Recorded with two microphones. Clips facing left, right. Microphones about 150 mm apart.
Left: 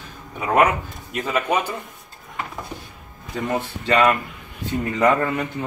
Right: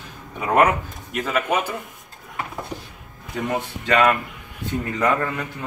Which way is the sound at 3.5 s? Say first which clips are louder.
Left 1 dB; 10° left (ahead or behind).